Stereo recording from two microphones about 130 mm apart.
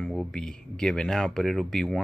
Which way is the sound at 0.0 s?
Centre (ahead or behind).